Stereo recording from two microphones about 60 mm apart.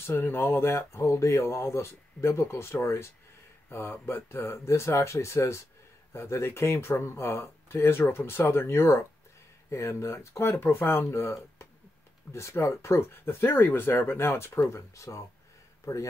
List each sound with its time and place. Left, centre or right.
0.2 s speech: left
3.6 s speech: left
14.0 s speech: left